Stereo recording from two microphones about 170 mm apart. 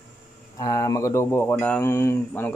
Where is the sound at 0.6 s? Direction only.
20° left (ahead or behind).